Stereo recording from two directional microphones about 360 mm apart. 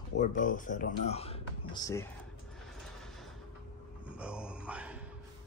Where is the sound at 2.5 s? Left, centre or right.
Centre.